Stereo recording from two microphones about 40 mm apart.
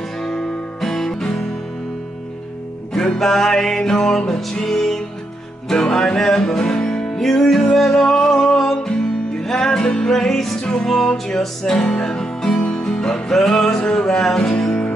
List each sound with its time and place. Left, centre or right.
0.2 s guitar: centre
2.9 s music: centre
7.2 s music: centre